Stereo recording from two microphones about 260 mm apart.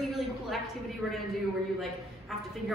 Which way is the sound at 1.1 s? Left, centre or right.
Centre.